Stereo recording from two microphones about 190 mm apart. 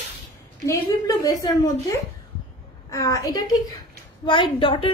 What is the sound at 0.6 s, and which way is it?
A woman's voice, 15° left (ahead or behind).